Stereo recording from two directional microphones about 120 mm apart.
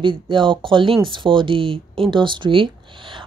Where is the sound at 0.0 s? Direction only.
45° right (ahead or behind).